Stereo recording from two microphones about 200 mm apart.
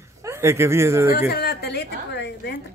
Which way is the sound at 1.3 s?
55° left (ahead or behind).